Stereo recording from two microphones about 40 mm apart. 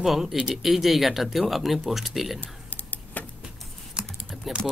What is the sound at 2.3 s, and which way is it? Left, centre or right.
Computer keyboard, left.